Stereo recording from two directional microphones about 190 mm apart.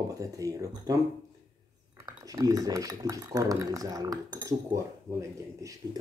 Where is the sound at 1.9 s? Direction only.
20° right (ahead or behind).